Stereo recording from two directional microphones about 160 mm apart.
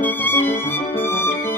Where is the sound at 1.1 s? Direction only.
15° left (ahead or behind).